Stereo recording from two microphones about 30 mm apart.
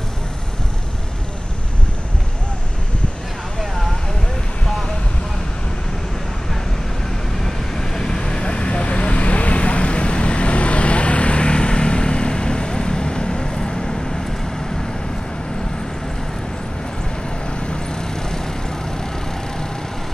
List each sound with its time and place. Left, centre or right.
7.4 s vehicle: centre
17.6 s vehicle: left